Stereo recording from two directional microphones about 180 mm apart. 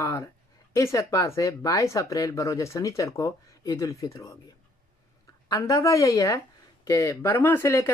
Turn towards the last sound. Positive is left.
turn(degrees=15)  # may be behind; listen again after turning